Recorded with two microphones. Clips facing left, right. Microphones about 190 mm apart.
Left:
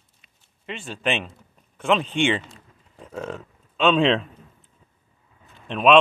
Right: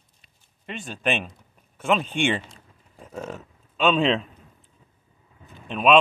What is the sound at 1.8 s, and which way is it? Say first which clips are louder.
Speech: left 2 dB; 5° right (ahead or behind).